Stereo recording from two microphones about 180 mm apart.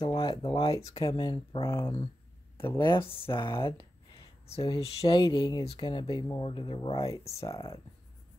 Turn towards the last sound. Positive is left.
turn(degrees=30)  # may be behind; listen again after turning